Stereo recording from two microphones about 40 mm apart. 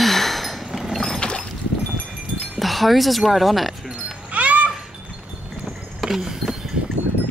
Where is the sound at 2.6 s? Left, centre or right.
Centre.